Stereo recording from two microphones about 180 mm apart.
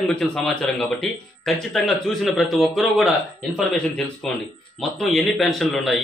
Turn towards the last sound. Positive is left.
turn(degrees=0)  # may be behind; listen again after turning